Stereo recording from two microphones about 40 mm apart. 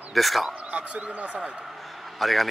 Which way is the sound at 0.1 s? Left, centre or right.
Centre.